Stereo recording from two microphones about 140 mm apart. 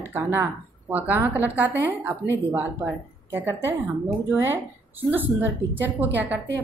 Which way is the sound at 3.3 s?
15° right (ahead or behind).